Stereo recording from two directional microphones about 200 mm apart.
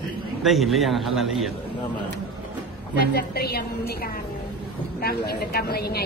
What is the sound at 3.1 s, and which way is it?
Speech, 50° left (ahead or behind).